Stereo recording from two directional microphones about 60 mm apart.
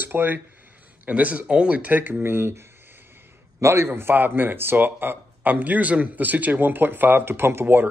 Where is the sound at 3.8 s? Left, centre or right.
Right.